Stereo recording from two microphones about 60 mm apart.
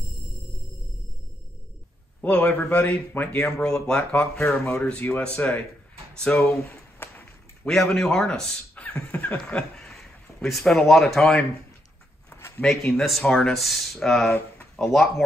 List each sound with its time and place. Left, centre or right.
2.2 s a man's voice: left
3.5 s a man's voice: centre
6.5 s a sound: left
7.6 s speech: centre
8.7 s speech: left
9.8 s speech: centre
12.6 s speech: centre